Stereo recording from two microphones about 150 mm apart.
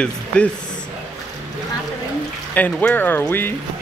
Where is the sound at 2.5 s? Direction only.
10° left (ahead or behind).